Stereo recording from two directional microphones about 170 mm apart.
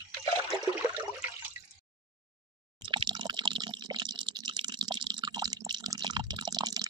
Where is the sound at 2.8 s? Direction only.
30° right (ahead or behind).